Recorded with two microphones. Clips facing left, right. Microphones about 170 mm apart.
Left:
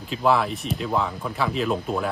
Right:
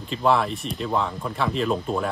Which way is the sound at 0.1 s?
Centre (ahead or behind).